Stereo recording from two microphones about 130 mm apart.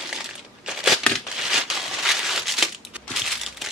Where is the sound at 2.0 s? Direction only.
Centre (ahead or behind).